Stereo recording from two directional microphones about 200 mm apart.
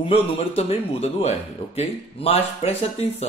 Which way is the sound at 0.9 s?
30° left (ahead or behind).